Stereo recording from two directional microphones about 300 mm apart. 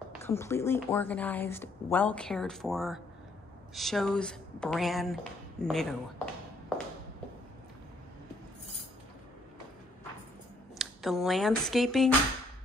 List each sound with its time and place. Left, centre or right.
0.2 s a woman's voice: centre
10.8 s speech: centre